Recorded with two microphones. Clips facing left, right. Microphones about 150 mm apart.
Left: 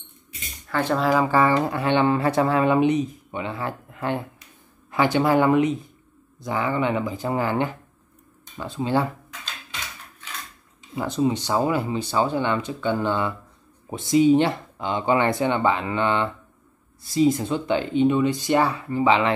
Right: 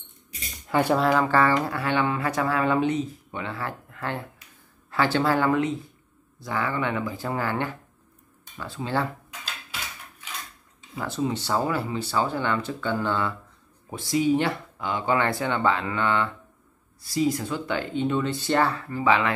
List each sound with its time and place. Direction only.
0.7 s speech: 15° right (ahead or behind)
0.9 s speech: 5° left (ahead or behind)
9.3 s a sound: 5° right (ahead or behind)
11.0 s speech: 20° left (ahead or behind)